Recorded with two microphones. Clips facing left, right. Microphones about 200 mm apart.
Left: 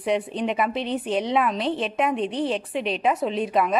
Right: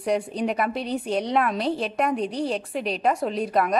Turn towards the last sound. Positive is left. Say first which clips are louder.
# even
turn(degrees=0)  # may be behind; listen again after turning